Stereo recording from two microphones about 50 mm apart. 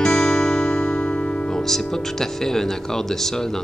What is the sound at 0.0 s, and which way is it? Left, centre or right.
Music, centre.